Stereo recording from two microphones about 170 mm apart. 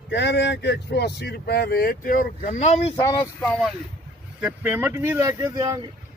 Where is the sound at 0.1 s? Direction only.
90° left; by 2.9 s 40° left (ahead or behind).